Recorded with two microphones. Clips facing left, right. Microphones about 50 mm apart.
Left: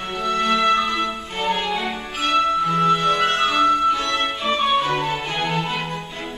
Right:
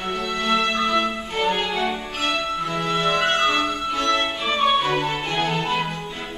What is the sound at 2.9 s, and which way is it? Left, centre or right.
Music, centre.